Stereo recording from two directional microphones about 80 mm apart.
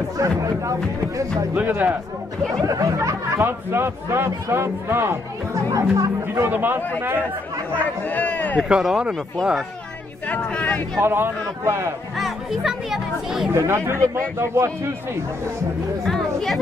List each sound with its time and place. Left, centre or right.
0.2 s speech: right
1.5 s speech: right
2.6 s speech: right
3.3 s a man's voice: right
5.7 s a man's voice: right
6.5 s speech: right
7.7 s speech: centre
8.6 s speech: centre
10.2 s speech: centre
11.0 s a man's voice: right
12.2 s speech: centre
13.5 s a man's voice: right
16.0 s chatter: centre